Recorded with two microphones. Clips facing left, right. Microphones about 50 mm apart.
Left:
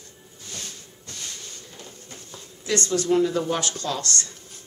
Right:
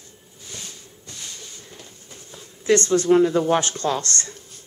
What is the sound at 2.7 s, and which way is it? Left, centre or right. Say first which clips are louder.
Speech: right 6 dB; right.